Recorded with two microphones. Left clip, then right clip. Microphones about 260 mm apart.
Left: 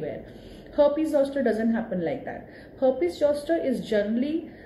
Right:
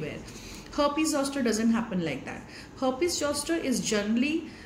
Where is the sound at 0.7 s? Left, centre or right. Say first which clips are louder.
Left 5 dB; centre.